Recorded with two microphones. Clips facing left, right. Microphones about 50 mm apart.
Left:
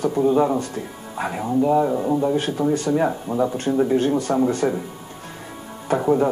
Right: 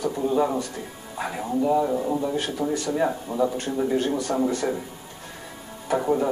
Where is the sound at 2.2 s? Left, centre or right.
Left.